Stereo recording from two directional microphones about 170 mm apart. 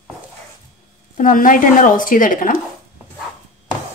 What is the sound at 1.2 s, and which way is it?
A woman's voice, 50° left (ahead or behind).